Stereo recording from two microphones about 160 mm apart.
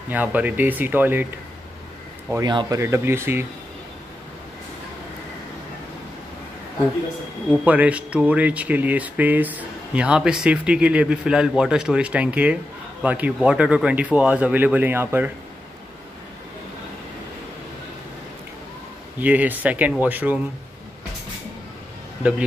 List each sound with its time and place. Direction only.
0.1 s speech: 10° right (ahead or behind)
2.4 s speech: 25° right (ahead or behind)
7.6 s speech: 10° right (ahead or behind)
19.1 s speech: 10° right (ahead or behind)